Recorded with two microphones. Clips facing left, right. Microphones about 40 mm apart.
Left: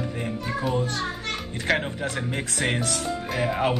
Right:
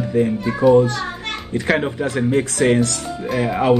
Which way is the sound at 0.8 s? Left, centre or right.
Right.